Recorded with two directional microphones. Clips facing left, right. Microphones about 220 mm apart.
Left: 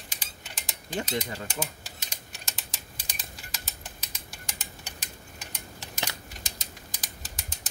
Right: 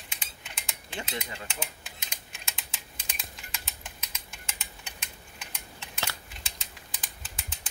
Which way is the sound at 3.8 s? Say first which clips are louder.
Left 2 dB; 35° left (ahead or behind).